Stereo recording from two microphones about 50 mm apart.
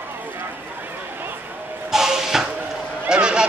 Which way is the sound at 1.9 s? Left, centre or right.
Centre.